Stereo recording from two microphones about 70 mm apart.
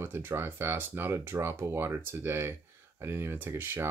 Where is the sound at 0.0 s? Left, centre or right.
Right.